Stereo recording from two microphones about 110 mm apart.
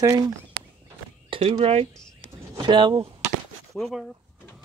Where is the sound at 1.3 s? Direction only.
70° right (ahead or behind).